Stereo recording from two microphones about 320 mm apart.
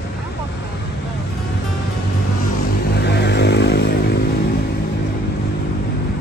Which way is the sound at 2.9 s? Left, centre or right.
Left.